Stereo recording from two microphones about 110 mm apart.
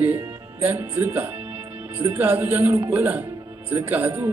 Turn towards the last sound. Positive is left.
turn(degrees=-15)  # may be behind; listen again after turning